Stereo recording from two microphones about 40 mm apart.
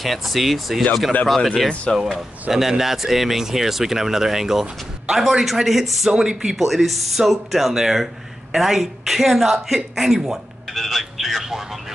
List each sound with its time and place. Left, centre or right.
0.0 s speech: centre
1.9 s speech: centre
2.5 s speech: right
2.8 s speech: centre
6.1 s speech: centre
6.5 s speech: centre
10.7 s speech: centre